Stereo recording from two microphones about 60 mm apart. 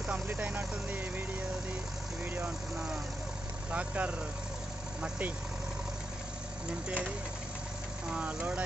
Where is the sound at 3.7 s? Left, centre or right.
Right.